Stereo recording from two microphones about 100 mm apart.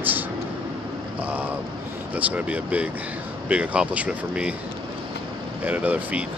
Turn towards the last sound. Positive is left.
turn(degrees=-15)  # may be behind; listen again after turning